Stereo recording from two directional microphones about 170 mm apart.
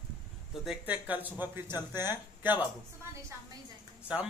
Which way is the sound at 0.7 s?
10° right (ahead or behind).